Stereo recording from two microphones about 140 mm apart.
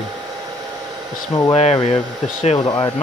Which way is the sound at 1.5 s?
45° left (ahead or behind).